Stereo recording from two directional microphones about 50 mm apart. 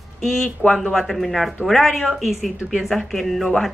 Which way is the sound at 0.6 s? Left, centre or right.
Left.